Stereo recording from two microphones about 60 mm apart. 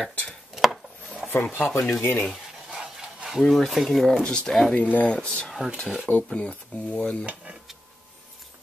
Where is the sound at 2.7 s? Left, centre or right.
Centre.